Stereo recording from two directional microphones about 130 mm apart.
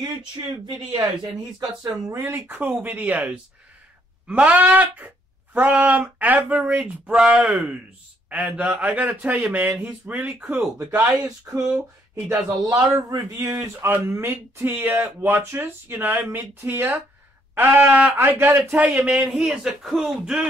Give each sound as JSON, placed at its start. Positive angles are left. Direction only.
{"t": 1.2, "sound": "speech", "side_deg": -35}
{"t": 2.2, "sound": "speech", "side_deg": -15}